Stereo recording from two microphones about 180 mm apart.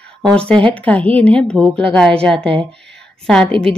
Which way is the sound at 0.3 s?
5° left (ahead or behind).